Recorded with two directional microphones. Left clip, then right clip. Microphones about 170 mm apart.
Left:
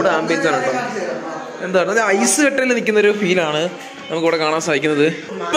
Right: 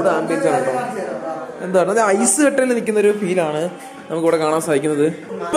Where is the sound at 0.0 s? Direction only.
5° right (ahead or behind).